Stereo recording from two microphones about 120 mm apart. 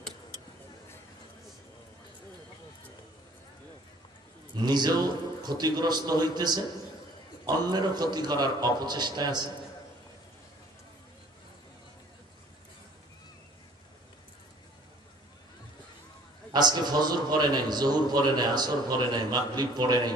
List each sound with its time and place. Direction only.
4.6 s a man's voice: 35° right (ahead or behind)
7.6 s a man's voice: 35° right (ahead or behind)
16.5 s a man's voice: 35° right (ahead or behind)